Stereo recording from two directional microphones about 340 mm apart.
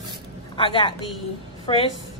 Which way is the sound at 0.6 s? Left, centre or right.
Centre.